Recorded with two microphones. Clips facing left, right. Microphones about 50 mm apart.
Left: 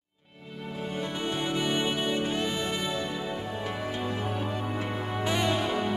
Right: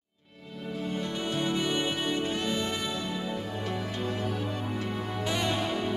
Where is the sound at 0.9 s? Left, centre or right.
Centre.